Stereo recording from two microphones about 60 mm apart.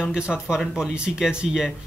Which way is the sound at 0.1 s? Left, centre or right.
Centre.